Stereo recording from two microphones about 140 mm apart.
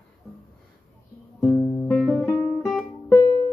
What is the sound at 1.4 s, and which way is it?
Music, centre (ahead or behind).